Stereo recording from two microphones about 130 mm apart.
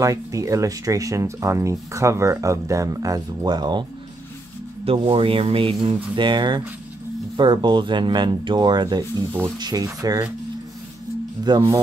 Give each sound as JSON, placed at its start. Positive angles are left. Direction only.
{"t": 0.0, "sound": "speech", "side_deg": -25}
{"t": 4.9, "sound": "rub", "side_deg": -40}
{"t": 6.1, "sound": "speech", "side_deg": -35}
{"t": 11.4, "sound": "speech", "side_deg": -30}